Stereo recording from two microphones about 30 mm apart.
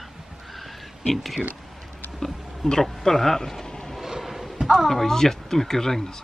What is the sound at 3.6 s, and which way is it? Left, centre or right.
Vehicle, centre.